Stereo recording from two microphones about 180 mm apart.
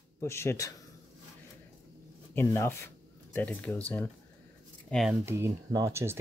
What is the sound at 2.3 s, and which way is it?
Speech, 15° left (ahead or behind).